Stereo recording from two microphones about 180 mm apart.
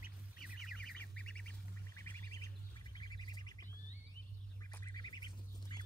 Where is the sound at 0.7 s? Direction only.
5° left (ahead or behind); by 3.6 s 25° left (ahead or behind).